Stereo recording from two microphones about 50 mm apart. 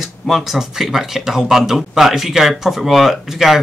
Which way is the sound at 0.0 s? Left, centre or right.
Centre.